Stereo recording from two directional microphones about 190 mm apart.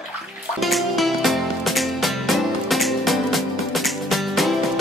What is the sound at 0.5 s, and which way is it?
Music, centre (ahead or behind).